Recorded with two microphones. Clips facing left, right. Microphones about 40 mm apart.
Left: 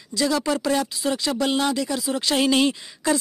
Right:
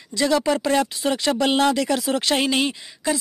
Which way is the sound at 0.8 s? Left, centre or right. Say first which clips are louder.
Right 2 dB; right.